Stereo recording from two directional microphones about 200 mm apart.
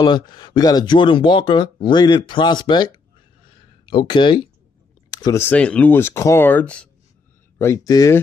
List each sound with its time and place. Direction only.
0.0 s speech: 20° left (ahead or behind)
3.4 s a sound: 25° left (ahead or behind)
5.1 s speech: 15° left (ahead or behind)